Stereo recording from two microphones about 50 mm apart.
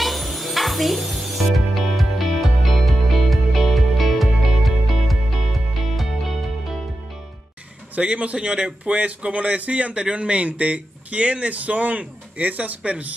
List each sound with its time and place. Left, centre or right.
0.0 s music: centre
7.9 s speech: right